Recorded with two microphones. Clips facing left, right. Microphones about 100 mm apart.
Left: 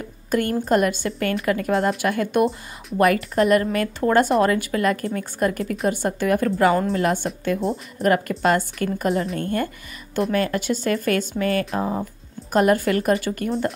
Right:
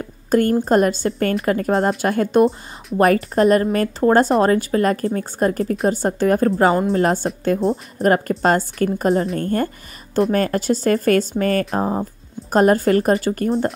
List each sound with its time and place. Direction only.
0.3 s a woman's voice: 35° right (ahead or behind)